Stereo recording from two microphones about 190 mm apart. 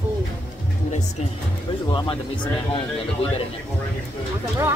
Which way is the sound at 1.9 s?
25° left (ahead or behind).